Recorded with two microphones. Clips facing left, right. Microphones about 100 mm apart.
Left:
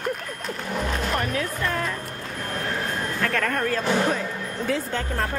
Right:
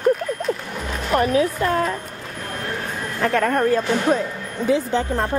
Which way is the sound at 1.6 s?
45° right (ahead or behind).